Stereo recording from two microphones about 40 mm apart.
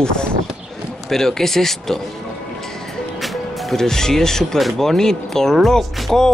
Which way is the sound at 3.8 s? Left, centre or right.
Centre.